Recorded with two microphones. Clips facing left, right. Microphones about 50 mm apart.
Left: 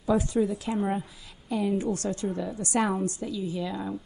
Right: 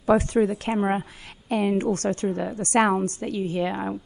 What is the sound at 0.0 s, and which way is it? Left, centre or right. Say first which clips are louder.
A woman's voice: right 5 dB; right.